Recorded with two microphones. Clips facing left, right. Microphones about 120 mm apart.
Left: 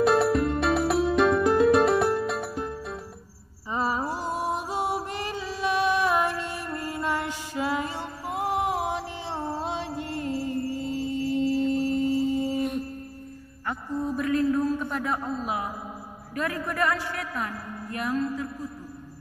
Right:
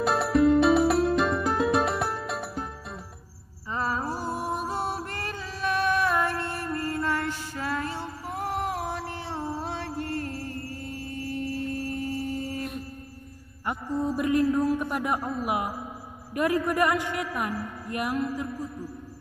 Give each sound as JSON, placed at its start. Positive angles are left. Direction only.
{"t": 0.0, "sound": "music", "side_deg": 0}
{"t": 3.7, "sound": "music", "side_deg": 15}
{"t": 12.5, "sound": "a sound", "side_deg": 0}
{"t": 13.7, "sound": "a man's voice", "side_deg": -15}